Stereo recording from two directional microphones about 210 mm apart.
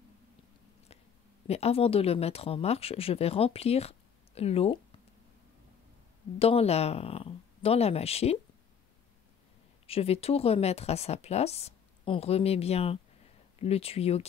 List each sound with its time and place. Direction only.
1.5 s speech: 30° left (ahead or behind)
6.4 s speech: 30° left (ahead or behind)
9.8 s speech: 30° left (ahead or behind)